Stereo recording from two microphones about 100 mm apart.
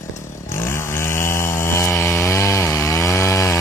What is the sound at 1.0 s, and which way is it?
Chainsaw, 25° left (ahead or behind).